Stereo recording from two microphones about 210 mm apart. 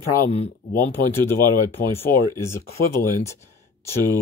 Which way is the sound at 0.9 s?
10° left (ahead or behind).